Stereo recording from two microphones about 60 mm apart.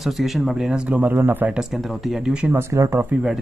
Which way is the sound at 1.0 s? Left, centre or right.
Right.